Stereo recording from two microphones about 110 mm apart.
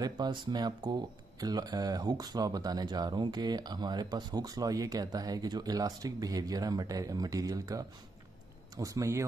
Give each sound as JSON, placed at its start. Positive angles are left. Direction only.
{"t": 0.0, "sound": "speech", "side_deg": -40}